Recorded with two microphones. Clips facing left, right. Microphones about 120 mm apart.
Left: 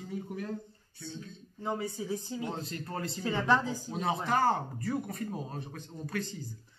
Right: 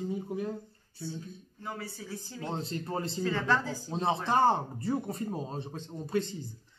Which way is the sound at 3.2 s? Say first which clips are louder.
Left 2 dB; 15° left (ahead or behind).